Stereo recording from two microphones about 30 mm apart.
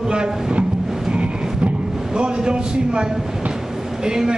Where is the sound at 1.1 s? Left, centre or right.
Right.